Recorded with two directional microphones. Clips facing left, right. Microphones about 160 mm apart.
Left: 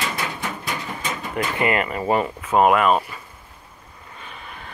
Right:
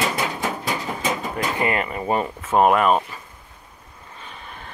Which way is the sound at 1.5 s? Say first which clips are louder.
Left 3 dB; 25° right (ahead or behind).